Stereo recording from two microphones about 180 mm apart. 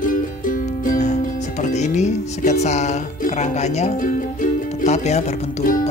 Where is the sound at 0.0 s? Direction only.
50° left (ahead or behind).